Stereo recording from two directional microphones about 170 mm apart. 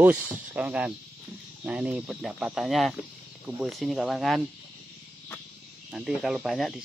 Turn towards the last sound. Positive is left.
turn(degrees=0)  # may be behind; listen again after turning